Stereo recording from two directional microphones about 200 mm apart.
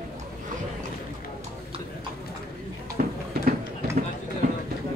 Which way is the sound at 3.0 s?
45° right (ahead or behind).